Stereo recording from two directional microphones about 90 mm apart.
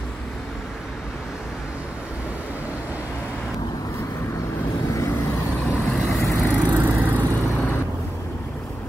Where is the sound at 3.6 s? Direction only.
45° left (ahead or behind).